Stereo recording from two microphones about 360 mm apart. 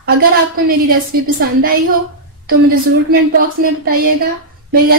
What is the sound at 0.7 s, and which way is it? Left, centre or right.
Speech, right.